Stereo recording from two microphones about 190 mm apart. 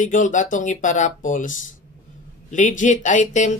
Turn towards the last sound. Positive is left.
turn(degrees=40)  # may be behind; listen again after turning